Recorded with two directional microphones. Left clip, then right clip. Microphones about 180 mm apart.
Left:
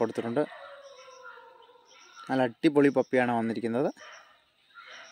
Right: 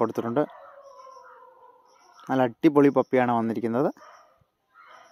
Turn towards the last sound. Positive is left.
turn(degrees=-25)  # may be behind; listen again after turning